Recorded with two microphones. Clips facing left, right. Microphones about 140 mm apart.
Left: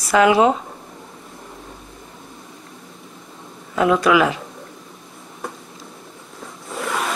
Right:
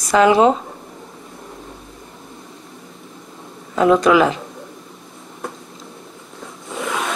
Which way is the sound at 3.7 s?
30° right (ahead or behind).